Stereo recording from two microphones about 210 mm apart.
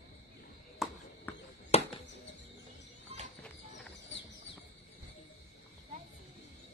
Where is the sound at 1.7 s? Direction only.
30° left (ahead or behind).